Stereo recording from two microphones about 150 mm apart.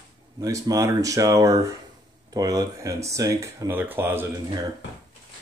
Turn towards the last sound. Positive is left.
turn(degrees=-15)  # may be behind; listen again after turning